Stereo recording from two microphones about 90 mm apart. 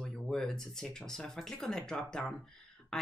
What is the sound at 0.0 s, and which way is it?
Speech, 5° left (ahead or behind).